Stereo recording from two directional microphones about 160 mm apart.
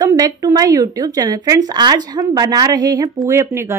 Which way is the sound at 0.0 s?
20° right (ahead or behind).